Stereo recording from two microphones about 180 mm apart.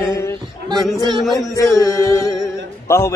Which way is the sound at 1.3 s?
20° left (ahead or behind).